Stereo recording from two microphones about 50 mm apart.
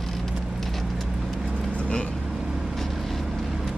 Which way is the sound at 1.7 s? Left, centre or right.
Left.